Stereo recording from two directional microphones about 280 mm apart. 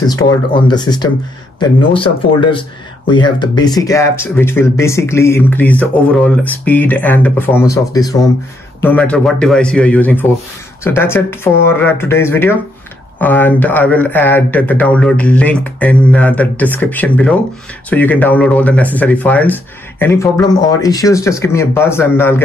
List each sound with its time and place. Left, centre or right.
0.0 s speech: centre